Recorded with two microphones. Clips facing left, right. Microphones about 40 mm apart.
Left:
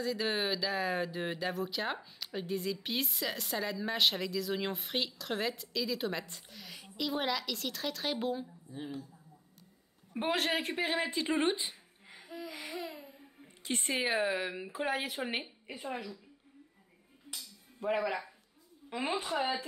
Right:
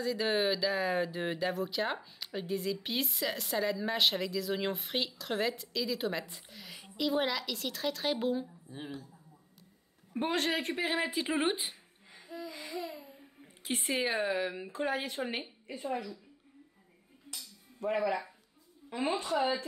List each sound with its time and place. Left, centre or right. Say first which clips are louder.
0.0 s speech: right 3 dB; centre
8.7 s speech: left 1 dB; right
10.2 s speech: even; centre
12.1 s music: right 1 dB; centre
12.5 s a sound: right 1 dB; centre
12.8 s a sound: right 1 dB; left
13.1 s speech: right 1 dB; centre
15.6 s a woman's voice: right 3 dB; centre
17.3 s a sound: even; centre
18.9 s a woman's voice: right 2 dB; centre
19.3 s a woman's voice: right 3 dB; centre